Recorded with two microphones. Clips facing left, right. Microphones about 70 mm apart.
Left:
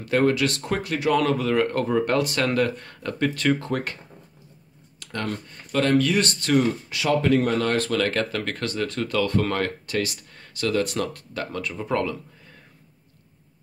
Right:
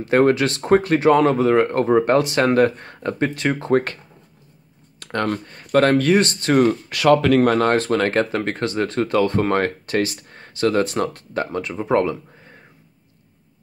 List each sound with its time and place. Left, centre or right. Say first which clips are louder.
0.0 s speech: right 5 dB; right
5.0 s speech: right 7 dB; right
6.5 s speech: right 5 dB; right
7.7 s speech: right 5 dB; right